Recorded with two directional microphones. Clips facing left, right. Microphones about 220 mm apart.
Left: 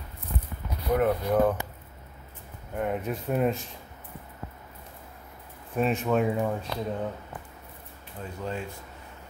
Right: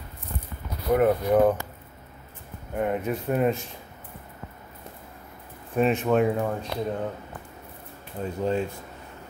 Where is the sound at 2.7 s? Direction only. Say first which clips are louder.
Right 3 dB; centre (ahead or behind).